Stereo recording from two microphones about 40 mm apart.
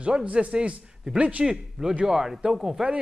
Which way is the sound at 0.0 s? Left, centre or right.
Right.